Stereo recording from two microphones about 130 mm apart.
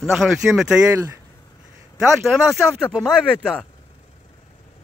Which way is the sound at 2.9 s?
5° left (ahead or behind).